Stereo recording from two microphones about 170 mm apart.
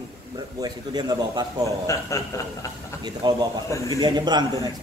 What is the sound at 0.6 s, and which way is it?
Speech, 25° right (ahead or behind).